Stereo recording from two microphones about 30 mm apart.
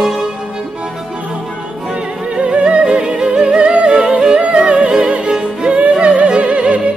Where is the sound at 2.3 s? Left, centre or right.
Right.